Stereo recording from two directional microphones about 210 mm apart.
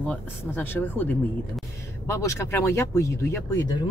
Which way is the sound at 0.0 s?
5° left (ahead or behind).